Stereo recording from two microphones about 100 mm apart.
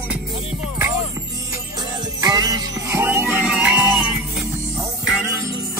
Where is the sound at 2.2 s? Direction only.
40° right (ahead or behind).